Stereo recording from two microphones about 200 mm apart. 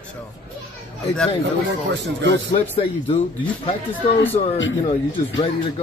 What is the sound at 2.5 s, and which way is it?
Speech, 30° left (ahead or behind).